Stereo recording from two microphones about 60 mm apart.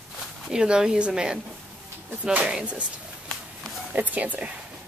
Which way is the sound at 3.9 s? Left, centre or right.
Right.